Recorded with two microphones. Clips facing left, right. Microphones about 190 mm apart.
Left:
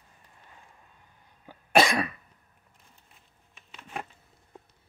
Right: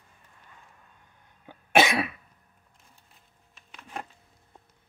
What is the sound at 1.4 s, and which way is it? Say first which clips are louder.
Cough: even; centre (ahead or behind).